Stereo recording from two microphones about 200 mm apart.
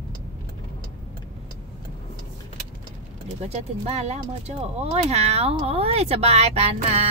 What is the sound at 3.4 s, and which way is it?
Speech, 35° right (ahead or behind).